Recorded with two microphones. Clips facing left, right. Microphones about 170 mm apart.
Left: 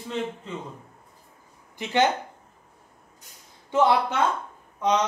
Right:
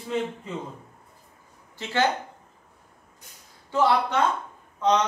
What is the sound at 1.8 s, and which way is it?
Speech, 20° left (ahead or behind).